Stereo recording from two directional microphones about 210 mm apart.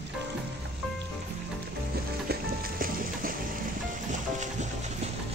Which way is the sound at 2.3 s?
45° right (ahead or behind).